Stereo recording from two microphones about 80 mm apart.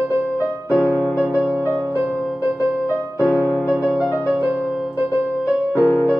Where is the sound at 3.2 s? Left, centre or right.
Left.